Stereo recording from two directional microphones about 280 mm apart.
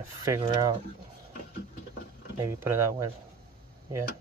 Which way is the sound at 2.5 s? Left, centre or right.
Centre.